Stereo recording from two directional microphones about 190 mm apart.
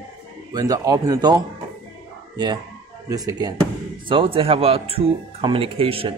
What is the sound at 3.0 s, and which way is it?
Speech, 20° right (ahead or behind).